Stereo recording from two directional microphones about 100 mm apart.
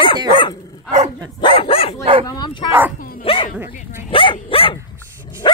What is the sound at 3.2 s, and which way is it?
Dog, 65° left (ahead or behind).